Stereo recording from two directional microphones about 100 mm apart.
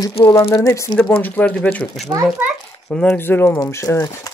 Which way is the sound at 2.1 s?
35° right (ahead or behind).